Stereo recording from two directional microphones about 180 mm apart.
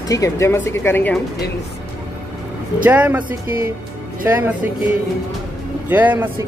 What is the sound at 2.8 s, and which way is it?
Speech, 10° right (ahead or behind).